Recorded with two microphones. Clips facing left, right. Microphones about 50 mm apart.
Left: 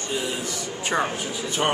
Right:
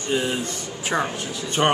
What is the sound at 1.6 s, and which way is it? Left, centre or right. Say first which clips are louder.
Speech: right 4 dB; centre.